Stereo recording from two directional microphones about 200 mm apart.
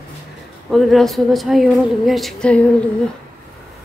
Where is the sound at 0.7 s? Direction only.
Centre (ahead or behind).